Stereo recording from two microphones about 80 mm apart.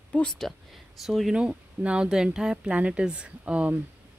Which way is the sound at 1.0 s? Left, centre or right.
Centre.